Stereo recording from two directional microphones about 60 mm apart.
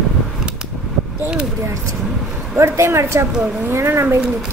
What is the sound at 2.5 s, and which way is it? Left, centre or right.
Speech, right.